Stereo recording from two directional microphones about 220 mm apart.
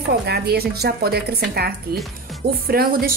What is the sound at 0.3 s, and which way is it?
A woman's voice, 45° right (ahead or behind).